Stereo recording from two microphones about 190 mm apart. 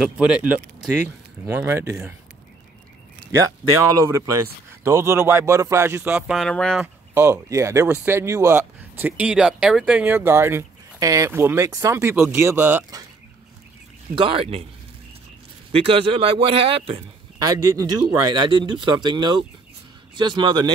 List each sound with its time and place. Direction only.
0.0 s speech: 5° right (ahead or behind)
3.3 s speech: 15° right (ahead or behind); by 6.8 s 5° left (ahead or behind)
6.8 s speech: 15° right (ahead or behind)
14.1 s a man's voice: 30° right (ahead or behind)
15.7 s a man's voice: 30° right (ahead or behind)
18.5 s a man's voice: 25° right (ahead or behind)